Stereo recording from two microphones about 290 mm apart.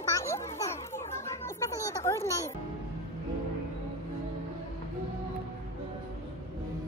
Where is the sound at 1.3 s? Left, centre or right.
Centre.